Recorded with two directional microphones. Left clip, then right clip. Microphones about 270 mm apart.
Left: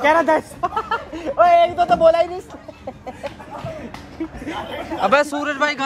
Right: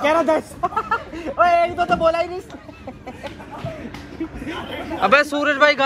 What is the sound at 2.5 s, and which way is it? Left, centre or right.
Chicken, left.